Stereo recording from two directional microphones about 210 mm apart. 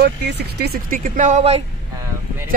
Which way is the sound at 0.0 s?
50° right (ahead or behind).